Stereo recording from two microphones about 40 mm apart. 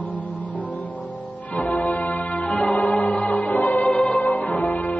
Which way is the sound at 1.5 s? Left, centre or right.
Left.